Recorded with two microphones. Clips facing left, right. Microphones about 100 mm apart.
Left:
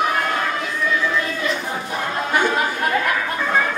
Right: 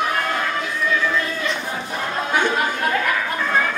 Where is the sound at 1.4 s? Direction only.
5° left (ahead or behind).